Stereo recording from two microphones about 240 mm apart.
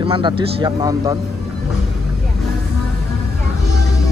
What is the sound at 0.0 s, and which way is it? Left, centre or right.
Speech, right.